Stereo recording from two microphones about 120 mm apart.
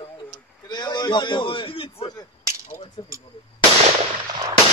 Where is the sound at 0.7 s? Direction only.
35° left (ahead or behind).